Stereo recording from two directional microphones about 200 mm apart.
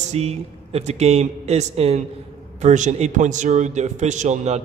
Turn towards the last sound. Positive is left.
turn(degrees=-35)  # may be behind; listen again after turning